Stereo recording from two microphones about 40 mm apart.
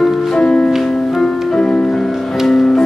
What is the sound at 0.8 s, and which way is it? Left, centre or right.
Music, centre.